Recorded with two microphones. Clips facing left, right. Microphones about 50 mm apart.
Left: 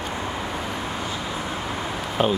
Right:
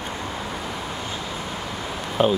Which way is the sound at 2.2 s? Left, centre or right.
Centre.